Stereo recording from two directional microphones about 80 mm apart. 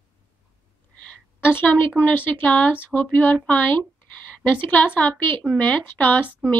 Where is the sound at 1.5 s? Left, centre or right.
Left.